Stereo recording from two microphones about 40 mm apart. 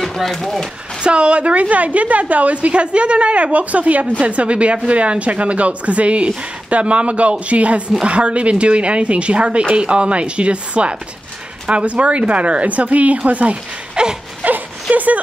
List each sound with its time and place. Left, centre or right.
0.0 s speech: centre
1.0 s a woman's voice: right
14.4 s a sound: right